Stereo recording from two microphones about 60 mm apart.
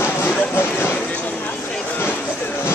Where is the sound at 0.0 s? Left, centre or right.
Left.